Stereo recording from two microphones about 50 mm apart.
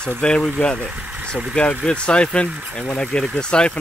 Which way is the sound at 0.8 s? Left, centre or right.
Right.